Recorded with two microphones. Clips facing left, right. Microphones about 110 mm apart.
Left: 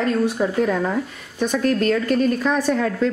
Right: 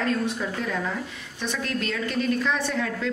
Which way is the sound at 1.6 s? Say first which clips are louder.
Left 10 dB; 45° left (ahead or behind).